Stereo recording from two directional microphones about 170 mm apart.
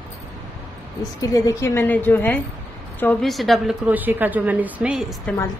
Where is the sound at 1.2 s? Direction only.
20° left (ahead or behind); by 3.6 s centre (ahead or behind).